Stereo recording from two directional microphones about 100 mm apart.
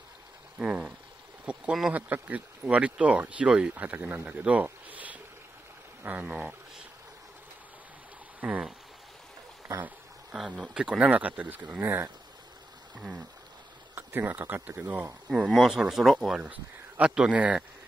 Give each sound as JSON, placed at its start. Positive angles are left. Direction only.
{"t": 0.6, "sound": "speech", "side_deg": -10}
{"t": 8.4, "sound": "speech", "side_deg": -15}
{"t": 10.3, "sound": "speech", "side_deg": -10}
{"t": 13.9, "sound": "speech", "side_deg": -20}
{"t": 15.3, "sound": "speech", "side_deg": -5}